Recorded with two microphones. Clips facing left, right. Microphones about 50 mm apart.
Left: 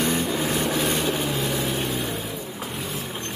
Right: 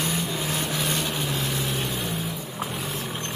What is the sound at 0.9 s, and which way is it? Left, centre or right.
Vehicle, centre.